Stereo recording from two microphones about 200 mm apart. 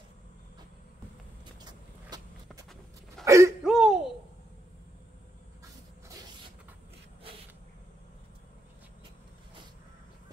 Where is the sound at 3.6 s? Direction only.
Centre (ahead or behind).